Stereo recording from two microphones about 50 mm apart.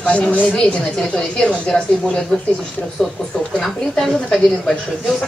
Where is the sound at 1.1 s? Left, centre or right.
Centre.